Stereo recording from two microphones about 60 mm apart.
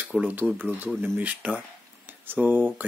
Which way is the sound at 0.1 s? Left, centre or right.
Right.